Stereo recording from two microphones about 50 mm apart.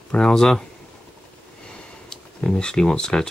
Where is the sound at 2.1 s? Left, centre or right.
Centre.